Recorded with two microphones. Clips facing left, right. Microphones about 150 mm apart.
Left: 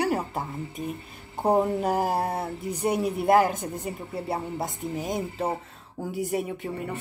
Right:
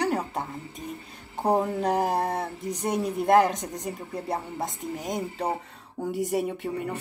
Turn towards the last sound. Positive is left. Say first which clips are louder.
# right 2 dB
turn(degrees=0)  # may be behind; listen again after turning